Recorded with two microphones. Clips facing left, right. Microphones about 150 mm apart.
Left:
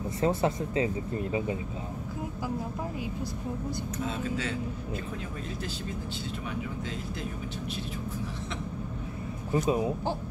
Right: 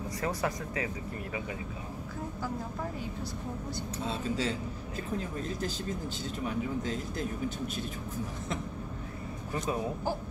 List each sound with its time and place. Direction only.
0.2 s speech: 25° left (ahead or behind)
4.0 s speech: 35° right (ahead or behind)
9.5 s speech: 20° left (ahead or behind)